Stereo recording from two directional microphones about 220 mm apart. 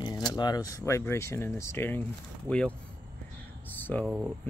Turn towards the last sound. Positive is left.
turn(degrees=-5)  # may be behind; listen again after turning